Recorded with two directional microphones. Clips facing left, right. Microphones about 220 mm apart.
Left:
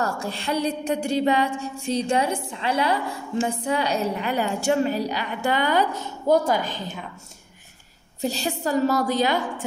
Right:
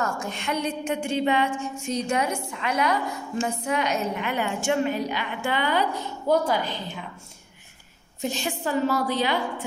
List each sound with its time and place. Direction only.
0.0 s a woman's voice: 35° left (ahead or behind)
8.2 s a woman's voice: 35° left (ahead or behind)